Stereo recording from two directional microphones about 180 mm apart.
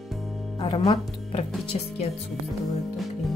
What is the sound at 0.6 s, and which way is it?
A woman's voice, 25° left (ahead or behind).